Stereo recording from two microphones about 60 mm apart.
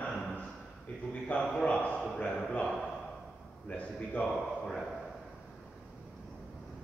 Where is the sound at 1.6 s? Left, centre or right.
Left.